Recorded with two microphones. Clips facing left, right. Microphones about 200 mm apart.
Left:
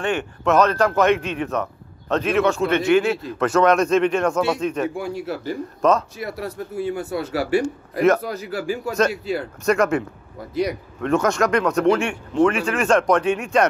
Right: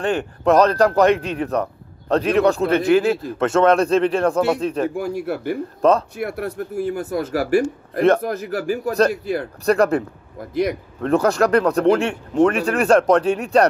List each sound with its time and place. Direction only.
0.0 s a man's voice: 35° right (ahead or behind); by 5.6 s 60° right (ahead or behind)
5.8 s a man's voice: 30° right (ahead or behind)
6.1 s speech: 55° right (ahead or behind); by 9.1 s 40° right (ahead or behind)
9.1 s speech: 55° right (ahead or behind)
9.7 s a man's voice: 35° right (ahead or behind)